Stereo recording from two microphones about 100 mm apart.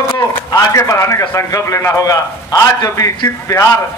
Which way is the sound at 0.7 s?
30° left (ahead or behind).